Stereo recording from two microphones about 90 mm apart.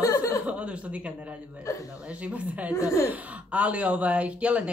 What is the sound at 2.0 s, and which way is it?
Speech, 15° right (ahead or behind).